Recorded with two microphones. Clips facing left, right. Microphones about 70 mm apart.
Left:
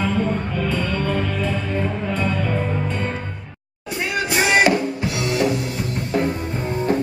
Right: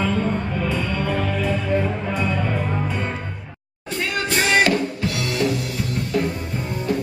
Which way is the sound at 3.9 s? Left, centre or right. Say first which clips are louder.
Left 1 dB; centre.